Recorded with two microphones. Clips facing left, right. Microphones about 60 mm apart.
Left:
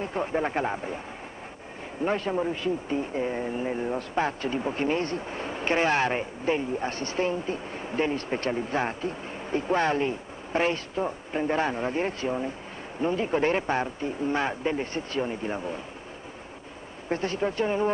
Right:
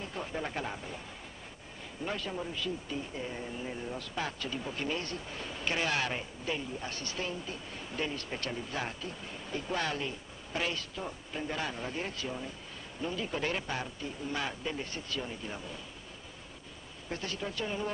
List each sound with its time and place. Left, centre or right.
0.0 s speech: left
2.0 s speech: left
17.1 s speech: left